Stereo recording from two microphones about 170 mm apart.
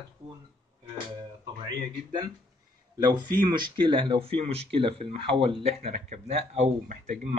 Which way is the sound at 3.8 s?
25° right (ahead or behind).